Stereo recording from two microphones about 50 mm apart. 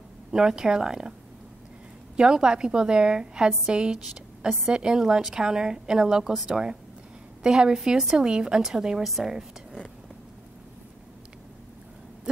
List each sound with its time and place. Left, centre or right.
0.3 s a woman's voice: centre
2.1 s a woman's voice: centre